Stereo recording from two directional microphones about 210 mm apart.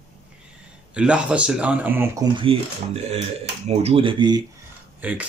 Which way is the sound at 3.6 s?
30° right (ahead or behind).